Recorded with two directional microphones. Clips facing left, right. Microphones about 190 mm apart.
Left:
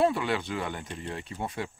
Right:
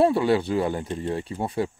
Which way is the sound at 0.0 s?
30° right (ahead or behind).